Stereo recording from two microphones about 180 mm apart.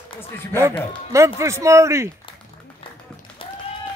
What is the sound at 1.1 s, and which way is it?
Speech, 15° right (ahead or behind).